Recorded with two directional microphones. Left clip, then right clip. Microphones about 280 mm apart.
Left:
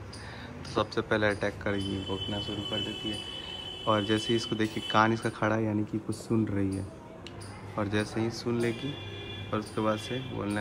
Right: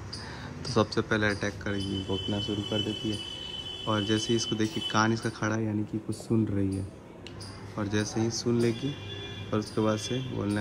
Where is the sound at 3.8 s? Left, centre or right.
Centre.